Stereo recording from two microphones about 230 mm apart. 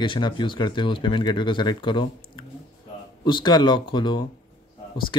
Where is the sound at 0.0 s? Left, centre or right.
Left.